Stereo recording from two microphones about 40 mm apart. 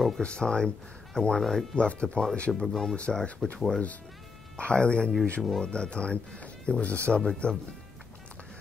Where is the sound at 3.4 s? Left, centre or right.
Centre.